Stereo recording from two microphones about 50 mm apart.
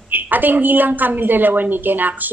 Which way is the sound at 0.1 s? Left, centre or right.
Right.